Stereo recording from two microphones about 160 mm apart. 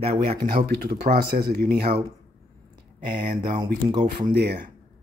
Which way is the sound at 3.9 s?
60° right (ahead or behind).